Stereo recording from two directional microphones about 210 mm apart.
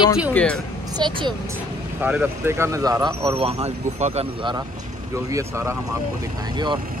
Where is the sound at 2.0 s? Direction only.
5° right (ahead or behind).